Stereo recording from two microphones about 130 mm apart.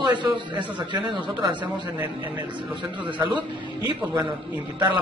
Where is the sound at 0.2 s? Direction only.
35° right (ahead or behind).